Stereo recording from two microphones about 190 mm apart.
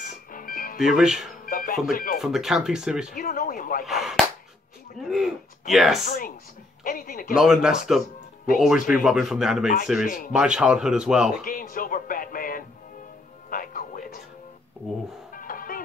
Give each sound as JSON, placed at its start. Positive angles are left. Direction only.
{"t": 0.3, "sound": "music", "side_deg": 45}
{"t": 0.7, "sound": "speech", "side_deg": 0}
{"t": 1.4, "sound": "music", "side_deg": 45}
{"t": 1.9, "sound": "speech", "side_deg": 50}
{"t": 2.2, "sound": "speech", "side_deg": 0}
{"t": 3.2, "sound": "speech", "side_deg": 50}
{"t": 3.8, "sound": "speech", "side_deg": 0}
{"t": 6.0, "sound": "speech", "side_deg": 45}
{"t": 7.3, "sound": "speech", "side_deg": 0}
{"t": 10.0, "sound": "speech", "side_deg": 45}
{"t": 10.3, "sound": "speech", "side_deg": -5}
{"t": 11.4, "sound": "speech", "side_deg": 50}
{"t": 13.5, "sound": "music", "side_deg": 45}
{"t": 15.3, "sound": "music", "side_deg": 50}